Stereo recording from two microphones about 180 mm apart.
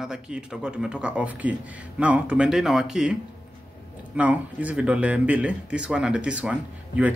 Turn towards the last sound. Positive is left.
turn(degrees=-10)  # may be behind; listen again after turning